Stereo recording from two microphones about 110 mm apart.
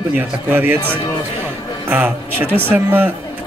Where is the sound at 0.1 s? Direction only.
15° right (ahead or behind).